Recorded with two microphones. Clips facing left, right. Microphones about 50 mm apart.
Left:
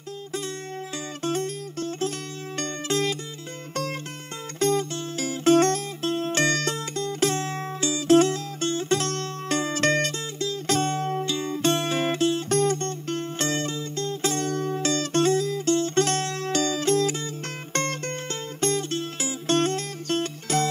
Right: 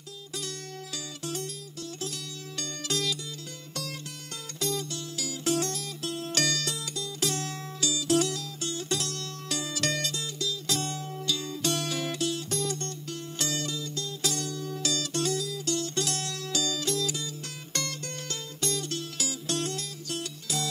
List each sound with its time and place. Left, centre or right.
1.2 s music: left
4.6 s music: left
11.2 s music: left